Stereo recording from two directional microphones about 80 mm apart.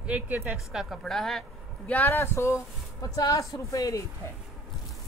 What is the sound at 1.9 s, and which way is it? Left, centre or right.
Speech, left.